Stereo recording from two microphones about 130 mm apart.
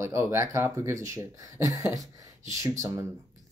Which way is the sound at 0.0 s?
20° right (ahead or behind).